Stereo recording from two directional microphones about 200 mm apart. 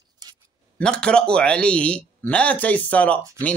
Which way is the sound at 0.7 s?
5° left (ahead or behind).